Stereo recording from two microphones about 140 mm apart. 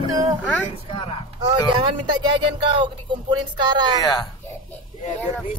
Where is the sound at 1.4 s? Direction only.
35° right (ahead or behind).